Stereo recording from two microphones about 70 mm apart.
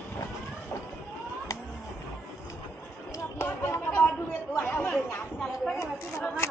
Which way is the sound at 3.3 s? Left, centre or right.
Left.